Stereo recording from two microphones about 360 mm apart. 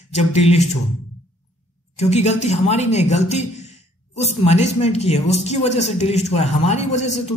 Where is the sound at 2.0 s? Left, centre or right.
Centre.